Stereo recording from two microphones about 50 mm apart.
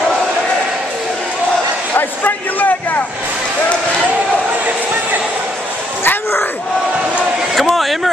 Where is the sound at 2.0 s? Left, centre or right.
Left.